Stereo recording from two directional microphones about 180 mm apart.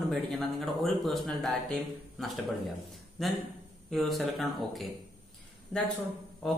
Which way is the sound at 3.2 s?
Centre (ahead or behind).